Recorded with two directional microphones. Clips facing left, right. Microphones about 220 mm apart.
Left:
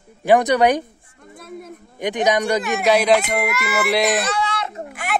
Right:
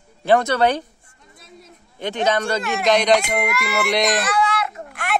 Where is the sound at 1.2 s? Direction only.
55° left (ahead or behind).